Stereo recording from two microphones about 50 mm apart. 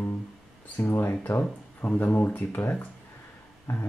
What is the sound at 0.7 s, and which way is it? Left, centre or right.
Speech, left.